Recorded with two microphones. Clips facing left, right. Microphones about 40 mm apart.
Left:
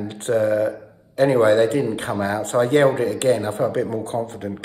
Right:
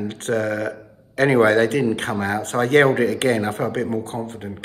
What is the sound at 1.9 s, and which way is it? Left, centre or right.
Speech, right.